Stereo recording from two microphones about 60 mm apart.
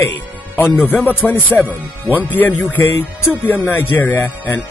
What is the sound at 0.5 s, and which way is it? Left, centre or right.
Speech, left.